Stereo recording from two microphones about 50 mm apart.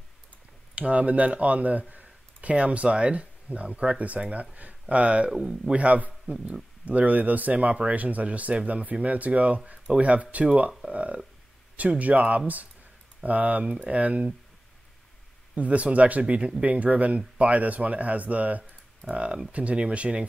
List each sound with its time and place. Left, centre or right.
0.7 s speech: right
5.3 s speech: centre
15.5 s speech: right